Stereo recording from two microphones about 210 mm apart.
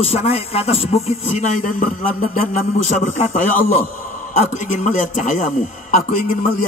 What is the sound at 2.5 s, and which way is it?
A man's voice, 35° left (ahead or behind).